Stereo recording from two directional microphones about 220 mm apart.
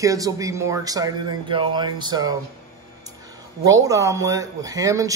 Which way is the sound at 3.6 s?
15° right (ahead or behind).